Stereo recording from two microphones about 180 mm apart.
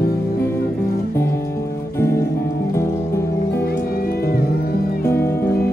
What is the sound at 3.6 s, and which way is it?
Music, 55° left (ahead or behind).